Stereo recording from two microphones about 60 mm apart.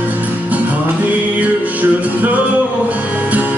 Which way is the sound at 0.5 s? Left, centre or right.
Right.